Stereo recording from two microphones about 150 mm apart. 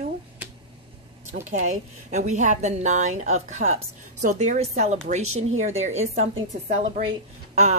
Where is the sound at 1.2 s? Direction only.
55° right (ahead or behind).